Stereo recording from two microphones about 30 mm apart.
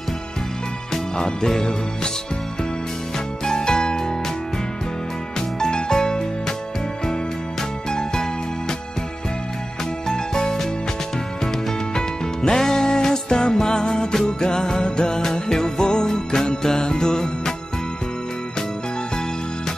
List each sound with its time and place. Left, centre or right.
1.1 s music: left
3.4 s music: left
5.6 s music: left
7.9 s music: left
10.0 s music: left
11.9 s music: left